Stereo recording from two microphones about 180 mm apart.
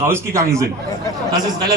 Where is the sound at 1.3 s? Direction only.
20° right (ahead or behind).